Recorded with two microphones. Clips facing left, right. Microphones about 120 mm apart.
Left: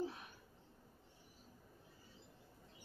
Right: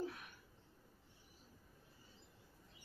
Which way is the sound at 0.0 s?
25° left (ahead or behind).